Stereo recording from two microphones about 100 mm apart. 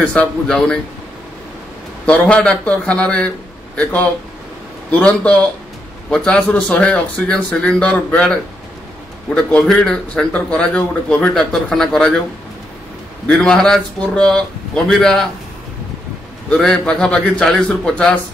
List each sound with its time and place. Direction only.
0.0 s speech: 15° left (ahead or behind)
2.0 s speech: 10° left (ahead or behind)
9.3 s speech: 10° left (ahead or behind)
13.3 s speech: 5° left (ahead or behind)
16.4 s speech: 5° left (ahead or behind)